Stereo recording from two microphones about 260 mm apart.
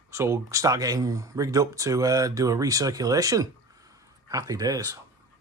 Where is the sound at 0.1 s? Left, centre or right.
Centre.